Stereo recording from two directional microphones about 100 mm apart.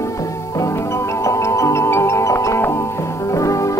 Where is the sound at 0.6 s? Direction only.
30° left (ahead or behind).